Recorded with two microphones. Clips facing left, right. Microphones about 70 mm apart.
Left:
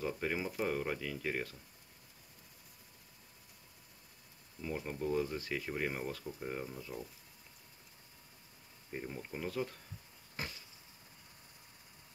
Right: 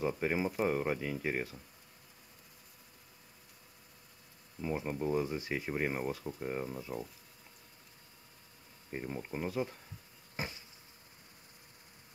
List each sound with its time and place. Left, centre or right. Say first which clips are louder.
0.0 s speech: right 4 dB; right
4.6 s speech: right 4 dB; right
8.9 s speech: right 3 dB; right